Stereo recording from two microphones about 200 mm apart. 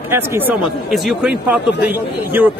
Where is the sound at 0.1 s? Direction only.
10° right (ahead or behind).